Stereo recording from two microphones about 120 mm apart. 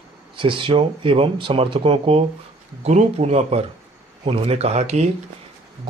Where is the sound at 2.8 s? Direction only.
65° right (ahead or behind).